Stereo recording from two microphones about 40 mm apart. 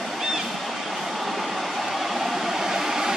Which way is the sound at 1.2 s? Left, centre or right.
Centre.